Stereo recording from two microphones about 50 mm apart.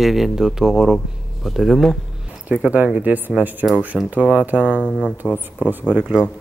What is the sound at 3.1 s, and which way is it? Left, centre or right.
Speech, right.